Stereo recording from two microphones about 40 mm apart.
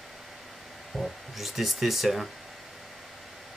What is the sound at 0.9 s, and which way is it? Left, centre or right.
Speech, centre.